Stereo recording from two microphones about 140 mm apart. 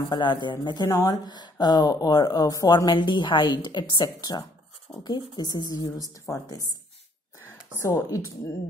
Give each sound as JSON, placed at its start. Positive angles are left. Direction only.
{"t": 0.1, "sound": "speech", "side_deg": 35}